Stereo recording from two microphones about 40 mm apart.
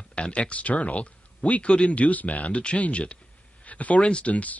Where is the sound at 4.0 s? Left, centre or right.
Left.